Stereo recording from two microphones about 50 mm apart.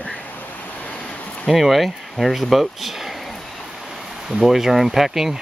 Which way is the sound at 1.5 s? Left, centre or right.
Centre.